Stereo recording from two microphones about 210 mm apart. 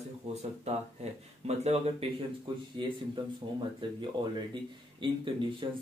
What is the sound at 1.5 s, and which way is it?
Speech, 30° right (ahead or behind).